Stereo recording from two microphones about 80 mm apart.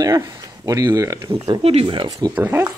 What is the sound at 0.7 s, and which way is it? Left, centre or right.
Speech, right.